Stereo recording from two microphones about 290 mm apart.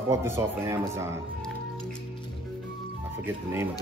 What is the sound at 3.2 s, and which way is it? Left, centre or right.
Speech, centre.